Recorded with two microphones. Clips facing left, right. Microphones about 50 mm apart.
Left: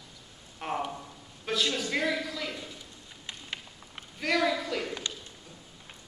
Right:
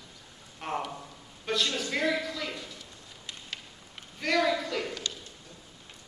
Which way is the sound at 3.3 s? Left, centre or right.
Left.